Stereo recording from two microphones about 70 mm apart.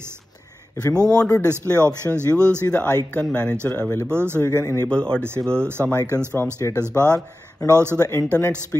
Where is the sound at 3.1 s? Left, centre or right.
Centre.